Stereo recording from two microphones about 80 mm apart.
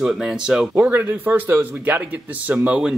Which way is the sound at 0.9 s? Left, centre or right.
Right.